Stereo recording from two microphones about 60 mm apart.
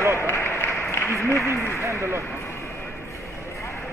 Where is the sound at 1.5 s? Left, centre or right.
Left.